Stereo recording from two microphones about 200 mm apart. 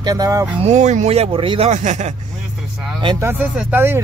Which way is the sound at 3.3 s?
10° right (ahead or behind).